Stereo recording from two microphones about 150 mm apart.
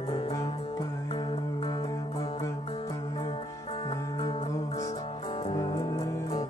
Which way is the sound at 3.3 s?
40° left (ahead or behind).